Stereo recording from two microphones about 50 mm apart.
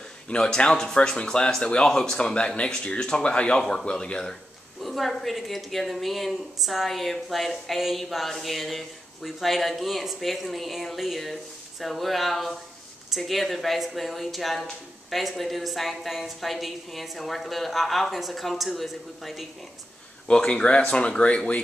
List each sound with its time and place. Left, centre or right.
0.3 s speech: centre
4.8 s a woman's voice: centre
20.2 s speech: centre